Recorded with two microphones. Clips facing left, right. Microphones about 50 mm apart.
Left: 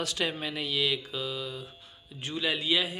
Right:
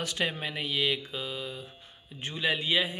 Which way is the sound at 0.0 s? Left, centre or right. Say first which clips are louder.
Even; right.